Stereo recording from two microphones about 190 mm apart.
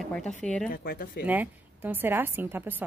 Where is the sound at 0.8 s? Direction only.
50° left (ahead or behind).